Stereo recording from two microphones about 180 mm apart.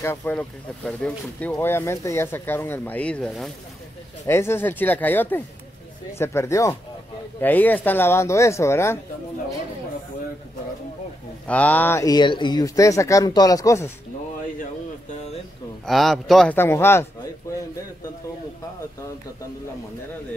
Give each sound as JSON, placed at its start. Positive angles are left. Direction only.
{"t": 0.0, "sound": "speech", "side_deg": 10}
{"t": 1.6, "sound": "speech", "side_deg": 15}
{"t": 4.3, "sound": "speech", "side_deg": 15}
{"t": 11.4, "sound": "speech", "side_deg": 10}
{"t": 15.8, "sound": "a man's voice", "side_deg": 0}
{"t": 16.5, "sound": "speech", "side_deg": 15}